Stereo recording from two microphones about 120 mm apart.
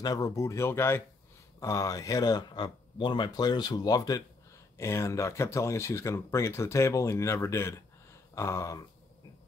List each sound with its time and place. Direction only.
0.0 s speech: 30° left (ahead or behind)